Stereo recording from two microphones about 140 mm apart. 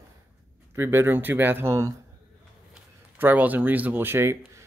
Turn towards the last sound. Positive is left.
turn(degrees=-20)  # may be behind; listen again after turning